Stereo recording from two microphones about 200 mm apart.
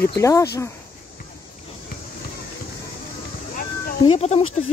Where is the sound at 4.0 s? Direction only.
30° left (ahead or behind).